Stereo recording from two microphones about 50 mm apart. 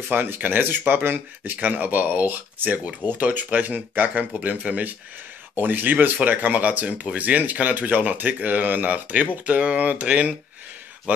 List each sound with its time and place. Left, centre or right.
0.1 s speech: right